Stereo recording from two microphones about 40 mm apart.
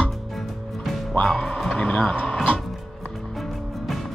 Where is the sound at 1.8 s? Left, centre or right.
Left.